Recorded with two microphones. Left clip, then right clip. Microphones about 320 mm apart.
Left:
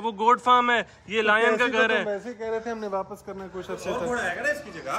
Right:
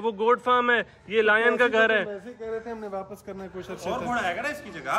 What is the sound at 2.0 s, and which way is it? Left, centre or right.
Speech, left.